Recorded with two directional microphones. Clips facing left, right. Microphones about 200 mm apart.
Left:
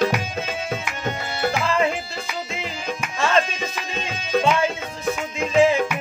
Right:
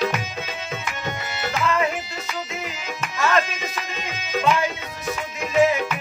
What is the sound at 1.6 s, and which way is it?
Music, 30° left (ahead or behind).